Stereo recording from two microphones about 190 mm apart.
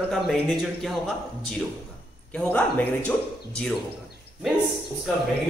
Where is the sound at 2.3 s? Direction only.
5° left (ahead or behind).